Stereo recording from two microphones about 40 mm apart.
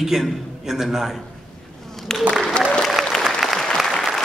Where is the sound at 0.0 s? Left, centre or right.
Centre.